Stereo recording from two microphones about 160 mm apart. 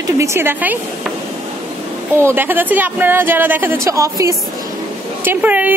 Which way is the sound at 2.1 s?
15° right (ahead or behind).